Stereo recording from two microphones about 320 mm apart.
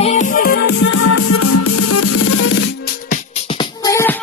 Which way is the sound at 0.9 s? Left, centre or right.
Left.